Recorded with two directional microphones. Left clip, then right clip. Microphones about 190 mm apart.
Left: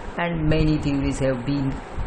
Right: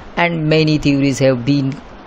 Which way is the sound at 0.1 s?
40° right (ahead or behind).